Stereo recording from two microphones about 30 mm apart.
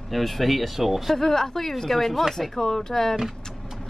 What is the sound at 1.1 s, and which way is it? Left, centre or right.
Speech, centre.